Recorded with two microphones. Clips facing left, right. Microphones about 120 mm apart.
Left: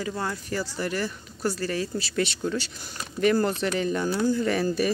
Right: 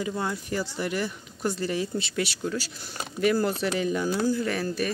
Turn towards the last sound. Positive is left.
turn(degrees=0)  # may be behind; listen again after turning